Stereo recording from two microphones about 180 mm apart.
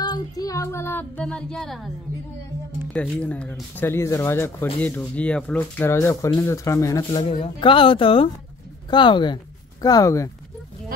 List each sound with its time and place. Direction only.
0.0 s child singing: 20° left (ahead or behind); by 1.9 s centre (ahead or behind)
2.9 s speech: 5° left (ahead or behind)